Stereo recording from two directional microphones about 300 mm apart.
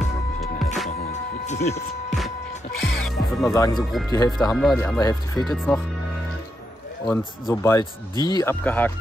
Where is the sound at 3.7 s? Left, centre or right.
Centre.